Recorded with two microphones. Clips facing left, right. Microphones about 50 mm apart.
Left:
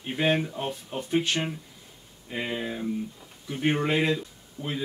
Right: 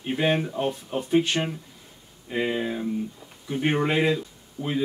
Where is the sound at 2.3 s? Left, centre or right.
Centre.